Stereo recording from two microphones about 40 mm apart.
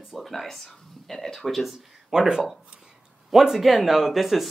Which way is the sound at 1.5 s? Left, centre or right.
Centre.